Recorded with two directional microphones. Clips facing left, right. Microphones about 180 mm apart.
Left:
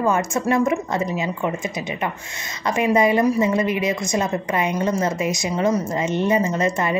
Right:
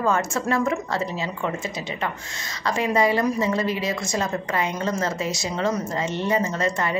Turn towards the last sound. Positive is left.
turn(degrees=20)  # may be behind; listen again after turning